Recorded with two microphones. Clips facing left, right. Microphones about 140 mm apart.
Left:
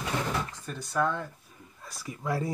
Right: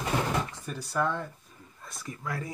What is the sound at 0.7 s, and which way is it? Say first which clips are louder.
Speech: left 3 dB; 5° right (ahead or behind).